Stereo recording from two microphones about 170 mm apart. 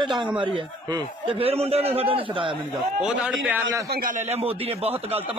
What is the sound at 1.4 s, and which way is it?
A man's voice, 35° right (ahead or behind).